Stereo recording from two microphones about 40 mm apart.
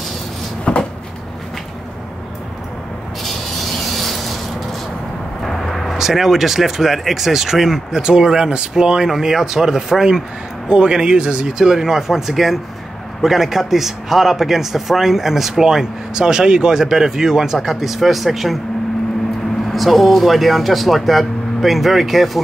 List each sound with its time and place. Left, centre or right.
0.7 s cupboard open or close: left
3.8 s a sound: centre
5.4 s vehicle: centre
5.9 s a man's voice: centre
10.7 s a man's voice: right; by 18.6 s centre
19.7 s speech: centre